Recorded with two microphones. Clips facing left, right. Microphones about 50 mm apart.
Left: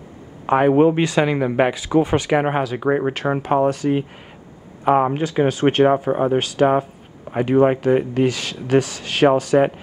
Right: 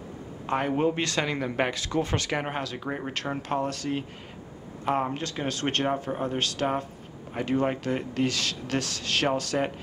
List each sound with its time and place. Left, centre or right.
0.5 s speech: left
1.0 s speech: centre
2.8 s speech: left
3.4 s speech: centre